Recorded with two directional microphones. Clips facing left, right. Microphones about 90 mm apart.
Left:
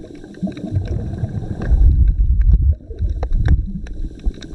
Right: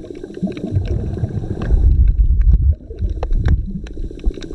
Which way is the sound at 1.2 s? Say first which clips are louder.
Right 2 dB; 5° left (ahead or behind).